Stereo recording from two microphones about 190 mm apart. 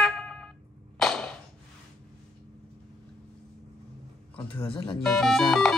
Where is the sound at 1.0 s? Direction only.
5° left (ahead or behind).